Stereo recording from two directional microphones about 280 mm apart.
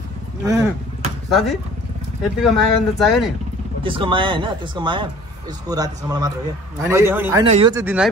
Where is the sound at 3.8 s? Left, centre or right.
Centre.